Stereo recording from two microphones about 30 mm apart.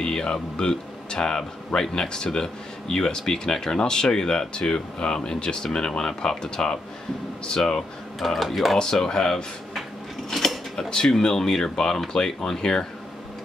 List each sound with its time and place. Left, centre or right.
0.0 s a man's voice: left
8.2 s speech: centre
9.0 s a man's voice: left
11.1 s a man's voice: centre